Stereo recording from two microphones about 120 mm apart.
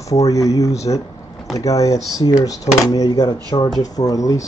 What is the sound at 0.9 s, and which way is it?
Speech, 40° left (ahead or behind).